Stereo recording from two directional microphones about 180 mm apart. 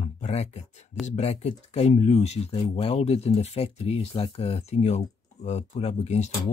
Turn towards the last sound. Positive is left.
turn(degrees=35)  # may be behind; listen again after turning